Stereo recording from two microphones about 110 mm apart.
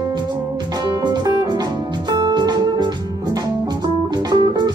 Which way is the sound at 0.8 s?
40° right (ahead or behind).